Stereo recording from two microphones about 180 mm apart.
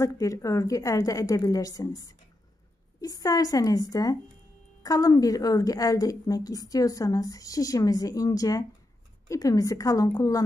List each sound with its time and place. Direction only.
0.0 s a woman's voice: 20° left (ahead or behind)